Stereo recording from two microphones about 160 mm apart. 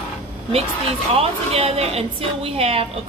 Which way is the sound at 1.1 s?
40° right (ahead or behind).